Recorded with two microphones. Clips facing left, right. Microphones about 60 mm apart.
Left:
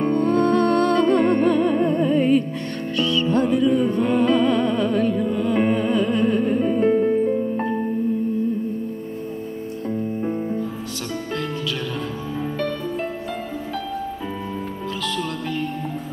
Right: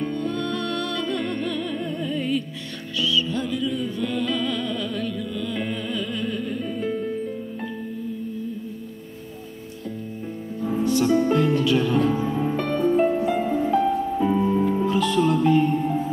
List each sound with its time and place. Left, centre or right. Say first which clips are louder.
0.0 s music: left 8 dB; left
10.9 s music: right 9 dB; centre